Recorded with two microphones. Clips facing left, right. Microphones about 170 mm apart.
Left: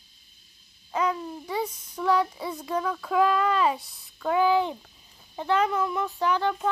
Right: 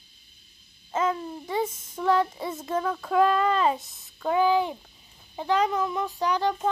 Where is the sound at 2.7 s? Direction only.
30° right (ahead or behind).